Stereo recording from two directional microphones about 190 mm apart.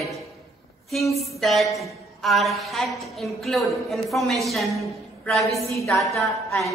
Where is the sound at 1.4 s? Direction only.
Centre (ahead or behind).